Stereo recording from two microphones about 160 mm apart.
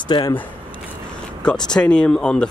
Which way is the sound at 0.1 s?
30° left (ahead or behind).